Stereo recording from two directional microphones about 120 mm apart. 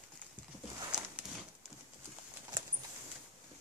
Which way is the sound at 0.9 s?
5° right (ahead or behind).